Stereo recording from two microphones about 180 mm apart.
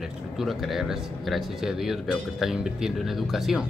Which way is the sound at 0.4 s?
Centre (ahead or behind).